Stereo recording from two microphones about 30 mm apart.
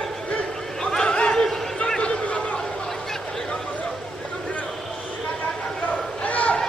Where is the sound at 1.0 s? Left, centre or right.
Left.